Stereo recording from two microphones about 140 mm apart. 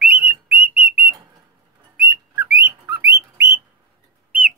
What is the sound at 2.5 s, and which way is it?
Bird, 20° right (ahead or behind).